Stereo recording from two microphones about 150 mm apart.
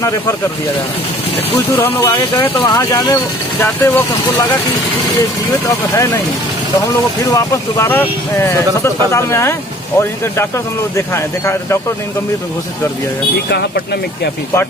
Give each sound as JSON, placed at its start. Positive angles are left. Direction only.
{"t": 1.8, "sound": "speech", "side_deg": 15}
{"t": 5.7, "sound": "speech", "side_deg": 20}
{"t": 7.2, "sound": "speech", "side_deg": 20}
{"t": 13.5, "sound": "speech", "side_deg": 90}